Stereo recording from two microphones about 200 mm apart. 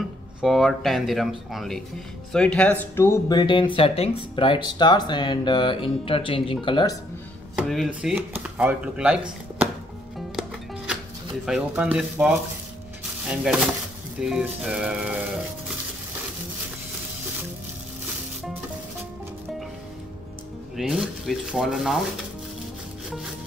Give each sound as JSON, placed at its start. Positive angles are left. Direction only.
{"t": 0.4, "sound": "speech", "side_deg": 0}
{"t": 7.5, "sound": "speech", "side_deg": 0}
{"t": 11.4, "sound": "speech", "side_deg": -5}
{"t": 20.7, "sound": "speech", "side_deg": 0}